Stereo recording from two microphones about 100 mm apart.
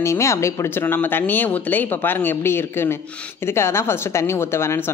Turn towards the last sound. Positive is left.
turn(degrees=25)  # may be behind; listen again after turning